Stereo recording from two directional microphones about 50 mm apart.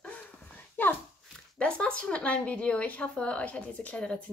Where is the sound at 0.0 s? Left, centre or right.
Left.